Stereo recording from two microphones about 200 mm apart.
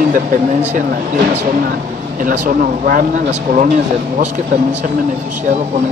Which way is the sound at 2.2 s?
45° right (ahead or behind).